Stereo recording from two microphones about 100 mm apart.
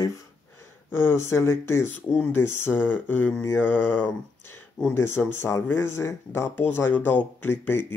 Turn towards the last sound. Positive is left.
turn(degrees=25)  # may be behind; listen again after turning